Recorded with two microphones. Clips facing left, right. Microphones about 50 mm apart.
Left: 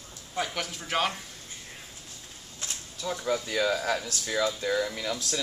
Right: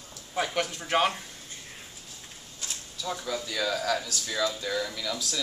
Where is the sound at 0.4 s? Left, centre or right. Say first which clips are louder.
Right 3 dB; centre.